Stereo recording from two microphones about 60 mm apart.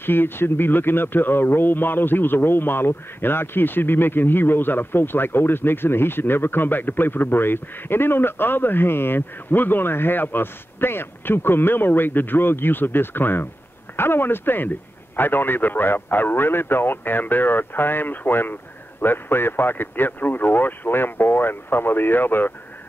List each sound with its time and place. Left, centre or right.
0.0 s speech: left